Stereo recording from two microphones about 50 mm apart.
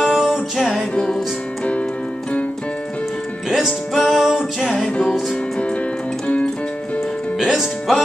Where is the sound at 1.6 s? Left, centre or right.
Left.